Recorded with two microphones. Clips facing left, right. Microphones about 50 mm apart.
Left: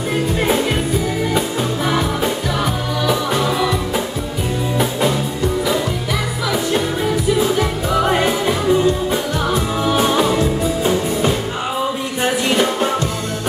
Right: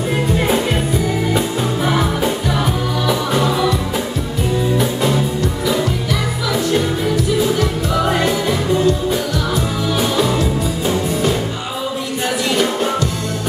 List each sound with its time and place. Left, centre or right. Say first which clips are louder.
1.9 s music: right 1 dB; centre
7.5 s music: even; centre